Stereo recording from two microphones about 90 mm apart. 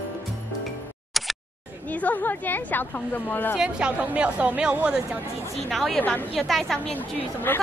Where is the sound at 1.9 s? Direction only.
15° left (ahead or behind).